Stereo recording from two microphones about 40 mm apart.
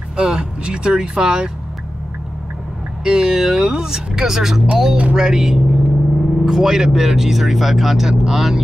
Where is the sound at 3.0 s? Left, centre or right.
Centre.